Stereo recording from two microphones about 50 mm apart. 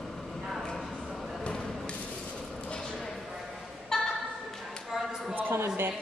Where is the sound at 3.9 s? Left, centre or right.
Centre.